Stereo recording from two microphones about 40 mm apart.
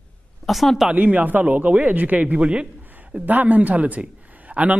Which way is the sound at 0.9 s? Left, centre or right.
Right.